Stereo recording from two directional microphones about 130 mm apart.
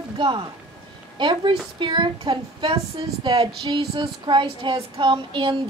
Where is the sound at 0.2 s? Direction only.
40° right (ahead or behind).